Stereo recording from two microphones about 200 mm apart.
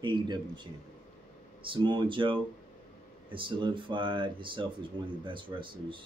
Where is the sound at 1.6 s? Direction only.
25° right (ahead or behind).